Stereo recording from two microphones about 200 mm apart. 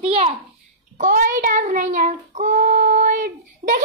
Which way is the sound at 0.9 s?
40° right (ahead or behind).